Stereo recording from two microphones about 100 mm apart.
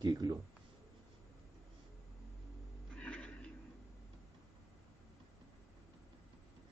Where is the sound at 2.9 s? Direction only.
10° left (ahead or behind).